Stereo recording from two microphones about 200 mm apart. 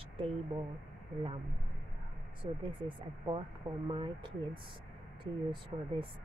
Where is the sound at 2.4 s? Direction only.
25° right (ahead or behind).